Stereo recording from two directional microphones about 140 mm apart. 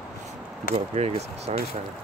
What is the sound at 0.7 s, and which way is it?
Speech, 50° right (ahead or behind).